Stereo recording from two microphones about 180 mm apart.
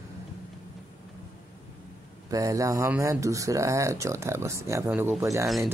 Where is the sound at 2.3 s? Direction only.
20° right (ahead or behind).